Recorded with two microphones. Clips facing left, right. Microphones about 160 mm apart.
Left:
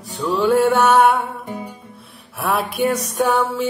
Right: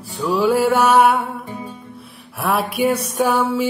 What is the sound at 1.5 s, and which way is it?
Music, 70° left (ahead or behind).